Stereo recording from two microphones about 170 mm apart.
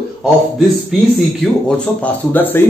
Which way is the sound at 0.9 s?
Centre (ahead or behind).